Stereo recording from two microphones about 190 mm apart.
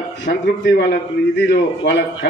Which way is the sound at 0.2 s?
65° left (ahead or behind).